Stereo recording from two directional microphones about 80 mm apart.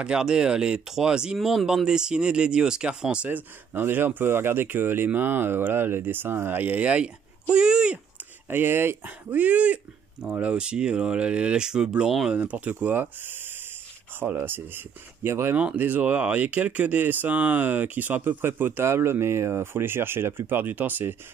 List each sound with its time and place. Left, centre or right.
0.0 s speech: centre
3.3 s speech: right
8.5 s speech: right; by 12.4 s centre
12.4 s speech: centre
15.5 s speech: centre